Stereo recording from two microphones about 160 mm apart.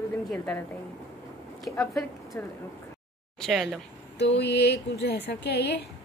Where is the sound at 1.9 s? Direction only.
20° left (ahead or behind).